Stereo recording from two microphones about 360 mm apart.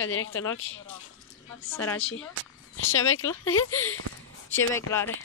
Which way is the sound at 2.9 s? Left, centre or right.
Left.